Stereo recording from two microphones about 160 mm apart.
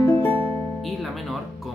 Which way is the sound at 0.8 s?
Centre (ahead or behind).